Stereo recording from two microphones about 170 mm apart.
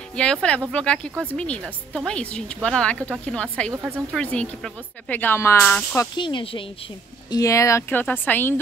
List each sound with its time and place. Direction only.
0.1 s speech: 5° left (ahead or behind)
6.1 s speech: 30° left (ahead or behind); by 8.5 s 10° left (ahead or behind)